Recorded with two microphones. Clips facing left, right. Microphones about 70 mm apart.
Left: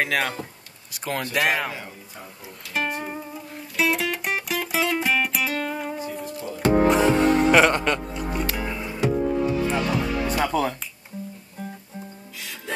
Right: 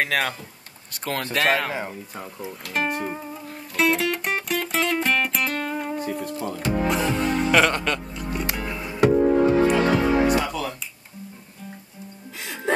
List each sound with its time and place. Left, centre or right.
0.0 s speech: centre
1.4 s speech: centre
2.7 s music: centre
6.6 s music: left
7.5 s music: centre
9.2 s music: right
10.4 s music: left